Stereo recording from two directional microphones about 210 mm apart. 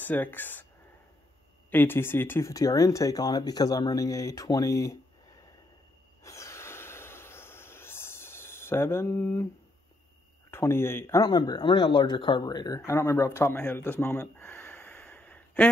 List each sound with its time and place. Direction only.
0.0 s speech: 10° left (ahead or behind)
1.7 s speech: 10° left (ahead or behind)
6.2 s snort: 15° left (ahead or behind)
10.5 s speech: 10° left (ahead or behind)